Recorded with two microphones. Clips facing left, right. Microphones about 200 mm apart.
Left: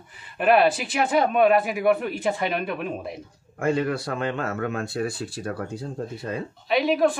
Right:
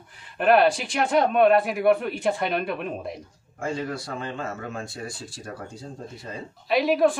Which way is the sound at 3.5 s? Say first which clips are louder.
Left 6 dB; 60° left (ahead or behind).